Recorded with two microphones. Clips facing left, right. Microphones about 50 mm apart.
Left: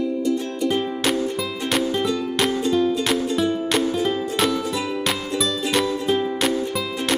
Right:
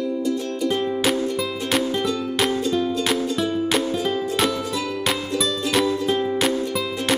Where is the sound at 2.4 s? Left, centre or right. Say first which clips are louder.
Left 2 dB; centre.